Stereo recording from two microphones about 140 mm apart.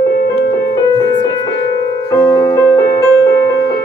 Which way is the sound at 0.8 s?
30° left (ahead or behind).